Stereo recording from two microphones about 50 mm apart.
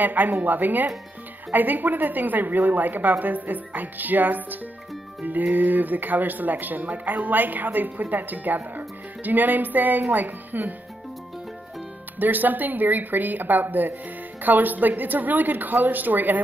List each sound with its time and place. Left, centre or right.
0.0 s speech: right
12.2 s speech: right